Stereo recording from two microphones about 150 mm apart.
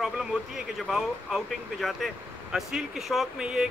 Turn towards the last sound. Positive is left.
turn(degrees=-5)  # may be behind; listen again after turning